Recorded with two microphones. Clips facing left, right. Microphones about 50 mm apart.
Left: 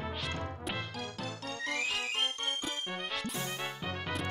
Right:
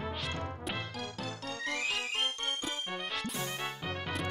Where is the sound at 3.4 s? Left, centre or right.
Right.